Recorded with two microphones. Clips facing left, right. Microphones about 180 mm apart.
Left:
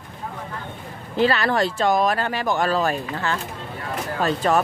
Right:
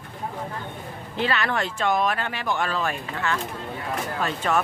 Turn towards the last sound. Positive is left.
turn(degrees=35)  # may be behind; listen again after turning